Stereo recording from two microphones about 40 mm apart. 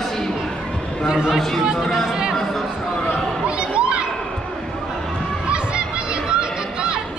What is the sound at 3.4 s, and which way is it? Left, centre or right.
Children playing, right.